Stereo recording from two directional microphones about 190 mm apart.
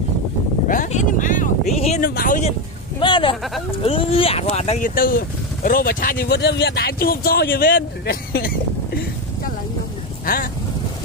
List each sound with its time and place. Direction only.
0.7 s a sound: 45° left (ahead or behind)
2.0 s speech: 45° left (ahead or behind)
3.0 s speech: 25° left (ahead or behind); by 8.5 s 50° left (ahead or behind)
10.2 s speech: 50° left (ahead or behind)